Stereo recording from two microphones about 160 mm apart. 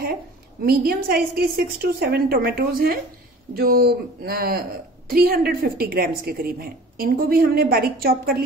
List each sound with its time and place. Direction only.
0.7 s a woman's voice: 70° right (ahead or behind)